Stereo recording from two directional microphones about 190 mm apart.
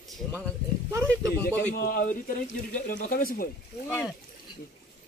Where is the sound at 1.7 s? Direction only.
45° left (ahead or behind).